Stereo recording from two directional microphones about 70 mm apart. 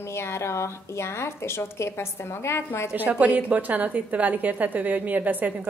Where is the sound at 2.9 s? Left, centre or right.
Right.